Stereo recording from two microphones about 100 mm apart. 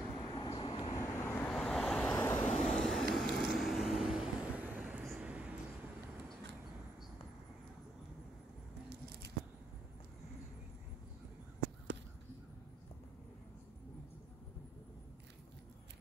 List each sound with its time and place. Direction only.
0.1 s vehicle: 55° left (ahead or behind)
0.9 s vehicle: 25° left (ahead or behind)
1.5 s vehicle: 5° left (ahead or behind)
2.1 s vehicle: 25° left (ahead or behind)
2.5 s vehicle: 10° left (ahead or behind); by 5.5 s 10° right (ahead or behind)